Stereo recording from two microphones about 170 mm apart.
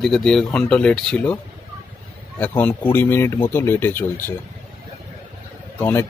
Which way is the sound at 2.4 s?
10° left (ahead or behind).